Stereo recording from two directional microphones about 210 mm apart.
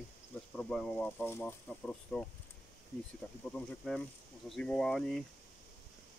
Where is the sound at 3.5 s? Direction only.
5° left (ahead or behind).